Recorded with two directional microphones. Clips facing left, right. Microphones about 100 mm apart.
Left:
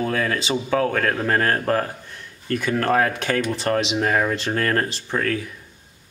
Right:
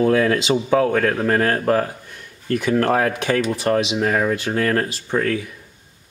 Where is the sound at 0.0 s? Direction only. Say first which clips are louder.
Right 7 dB; 25° right (ahead or behind).